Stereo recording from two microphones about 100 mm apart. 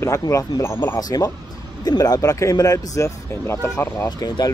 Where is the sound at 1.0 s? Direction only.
40° left (ahead or behind).